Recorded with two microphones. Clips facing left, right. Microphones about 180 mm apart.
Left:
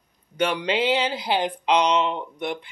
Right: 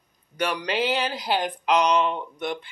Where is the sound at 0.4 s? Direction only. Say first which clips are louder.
Left 3 dB; 25° left (ahead or behind).